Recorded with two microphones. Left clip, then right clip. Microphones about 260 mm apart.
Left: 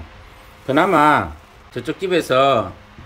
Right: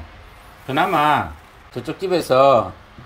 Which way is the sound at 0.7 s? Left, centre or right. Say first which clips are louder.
Left 3 dB; centre.